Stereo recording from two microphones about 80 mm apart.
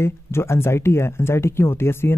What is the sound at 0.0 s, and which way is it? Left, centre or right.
Speech, left.